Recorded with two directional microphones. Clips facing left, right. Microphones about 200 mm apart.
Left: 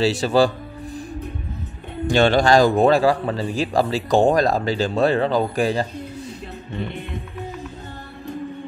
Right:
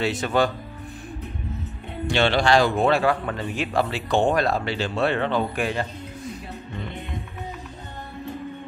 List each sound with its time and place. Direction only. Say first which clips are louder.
0.2 s a man's voice: left 4 dB; 30° left (ahead or behind)
2.0 s a man's voice: left 4 dB; 45° left (ahead or behind)